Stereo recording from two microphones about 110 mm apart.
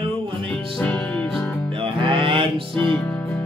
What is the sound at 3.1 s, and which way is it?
Music, 25° left (ahead or behind).